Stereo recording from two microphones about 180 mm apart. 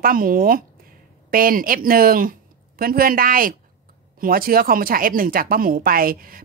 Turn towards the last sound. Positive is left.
turn(degrees=-55)  # may be behind; listen again after turning